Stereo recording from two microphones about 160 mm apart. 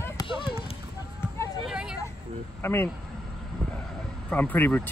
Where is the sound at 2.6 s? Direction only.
15° left (ahead or behind).